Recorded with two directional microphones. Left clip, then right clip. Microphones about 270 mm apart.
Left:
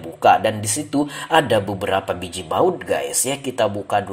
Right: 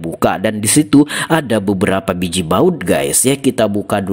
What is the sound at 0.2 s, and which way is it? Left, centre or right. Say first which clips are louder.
Speech: left 1 dB; right.